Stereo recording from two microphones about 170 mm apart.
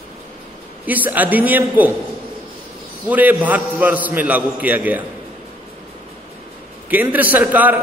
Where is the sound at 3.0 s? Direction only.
10° right (ahead or behind).